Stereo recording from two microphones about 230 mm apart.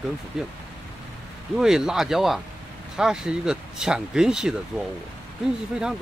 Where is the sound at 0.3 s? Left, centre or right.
Centre.